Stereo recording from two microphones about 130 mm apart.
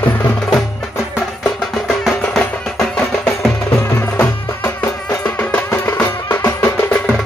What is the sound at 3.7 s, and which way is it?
Music, 20° left (ahead or behind).